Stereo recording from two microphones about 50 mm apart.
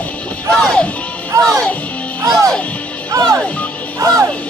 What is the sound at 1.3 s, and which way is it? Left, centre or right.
Speech, right.